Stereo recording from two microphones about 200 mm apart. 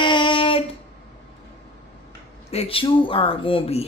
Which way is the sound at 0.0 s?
25° left (ahead or behind).